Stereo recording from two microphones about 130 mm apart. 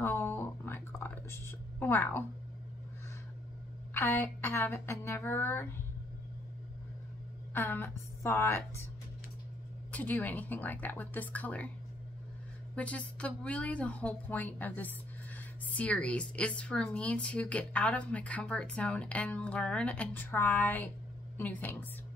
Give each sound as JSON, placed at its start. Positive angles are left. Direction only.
{"t": 0.0, "sound": "a sound", "side_deg": 15}
{"t": 3.9, "sound": "a woman's voice", "side_deg": 20}
{"t": 7.5, "sound": "a woman's voice", "side_deg": 15}
{"t": 9.8, "sound": "a woman's voice", "side_deg": 15}
{"t": 12.7, "sound": "a woman's voice", "side_deg": 10}